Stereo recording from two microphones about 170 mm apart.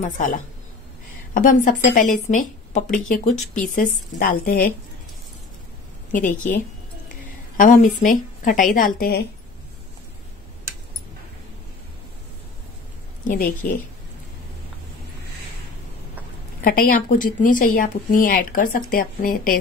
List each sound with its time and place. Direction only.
0.0 s a woman's voice: 50° left (ahead or behind)
6.1 s a woman's voice: 50° left (ahead or behind)
13.3 s a woman's voice: 50° left (ahead or behind)
16.6 s a woman's voice: 55° left (ahead or behind)